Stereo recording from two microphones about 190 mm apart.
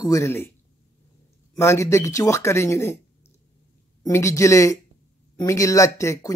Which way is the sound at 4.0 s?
15° left (ahead or behind).